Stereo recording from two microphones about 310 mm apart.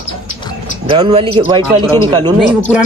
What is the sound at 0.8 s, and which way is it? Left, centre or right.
Speech, centre.